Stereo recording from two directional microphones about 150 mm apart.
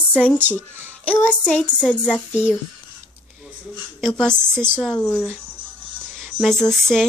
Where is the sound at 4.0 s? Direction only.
5° left (ahead or behind).